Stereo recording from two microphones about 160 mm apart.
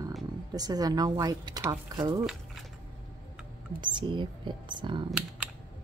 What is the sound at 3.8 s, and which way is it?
Speech, 30° right (ahead or behind).